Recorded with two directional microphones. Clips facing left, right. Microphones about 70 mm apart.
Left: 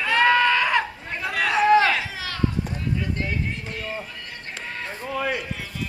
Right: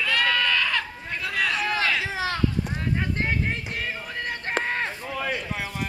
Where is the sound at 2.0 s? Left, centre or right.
Right.